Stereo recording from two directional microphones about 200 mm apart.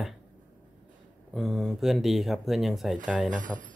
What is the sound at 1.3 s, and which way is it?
Speech, centre (ahead or behind).